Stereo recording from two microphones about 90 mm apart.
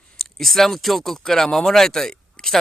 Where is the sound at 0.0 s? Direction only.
5° left (ahead or behind).